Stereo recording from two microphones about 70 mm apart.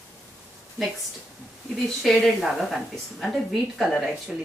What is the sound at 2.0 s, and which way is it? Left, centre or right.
A woman's voice, centre.